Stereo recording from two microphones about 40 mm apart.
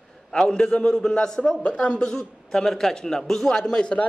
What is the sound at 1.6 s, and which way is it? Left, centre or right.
A man's voice, left.